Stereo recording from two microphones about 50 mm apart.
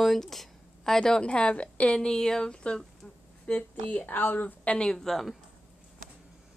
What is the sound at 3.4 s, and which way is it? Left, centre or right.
Speech, left.